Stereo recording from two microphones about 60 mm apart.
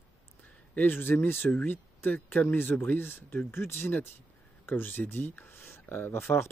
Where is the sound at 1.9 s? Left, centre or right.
Left.